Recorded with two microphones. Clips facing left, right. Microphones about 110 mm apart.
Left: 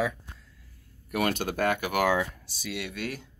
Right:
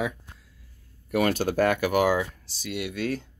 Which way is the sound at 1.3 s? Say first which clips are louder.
Right 4 dB; 40° right (ahead or behind).